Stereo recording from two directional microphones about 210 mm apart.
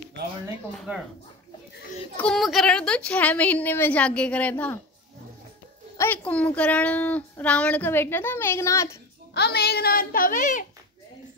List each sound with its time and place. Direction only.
2.1 s speech: centre (ahead or behind)
5.9 s speech: 10° left (ahead or behind)
9.3 s a child's voice: 50° left (ahead or behind)